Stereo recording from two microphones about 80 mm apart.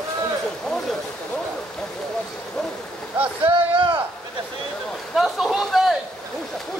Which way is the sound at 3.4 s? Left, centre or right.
Right.